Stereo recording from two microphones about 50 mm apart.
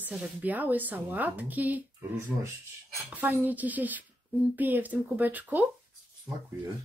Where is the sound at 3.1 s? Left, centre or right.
Right.